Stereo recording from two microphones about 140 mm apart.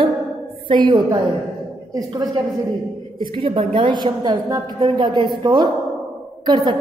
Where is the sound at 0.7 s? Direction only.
35° right (ahead or behind).